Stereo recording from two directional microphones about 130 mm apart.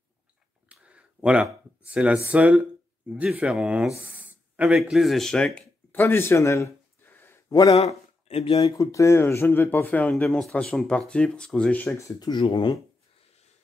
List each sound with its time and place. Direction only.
0.7 s a sound: 10° right (ahead or behind)
2.2 s speech: 10° right (ahead or behind); by 7.5 s 20° left (ahead or behind)
7.7 s speech: 50° left (ahead or behind)
8.6 s speech: 30° left (ahead or behind)